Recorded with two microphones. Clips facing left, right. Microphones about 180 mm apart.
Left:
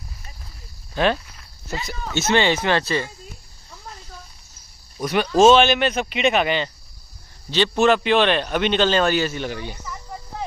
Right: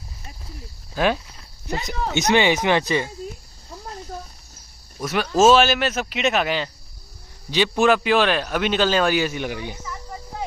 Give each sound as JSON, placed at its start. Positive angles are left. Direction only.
{"t": 0.9, "sound": "a man's voice", "side_deg": -10}
{"t": 1.7, "sound": "a man's voice", "side_deg": -20}
{"t": 4.9, "sound": "a man's voice", "side_deg": 0}